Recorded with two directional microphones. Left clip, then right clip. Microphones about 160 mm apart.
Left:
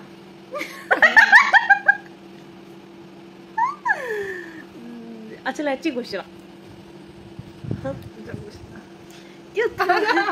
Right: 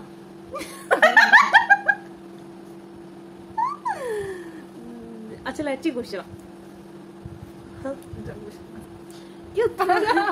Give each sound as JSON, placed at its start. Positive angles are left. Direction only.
{"t": 0.6, "sound": "laughter", "side_deg": 20}
{"t": 3.5, "sound": "a sound", "side_deg": 20}
{"t": 5.4, "sound": "a woman's voice", "side_deg": 20}
{"t": 9.8, "sound": "speech", "side_deg": -5}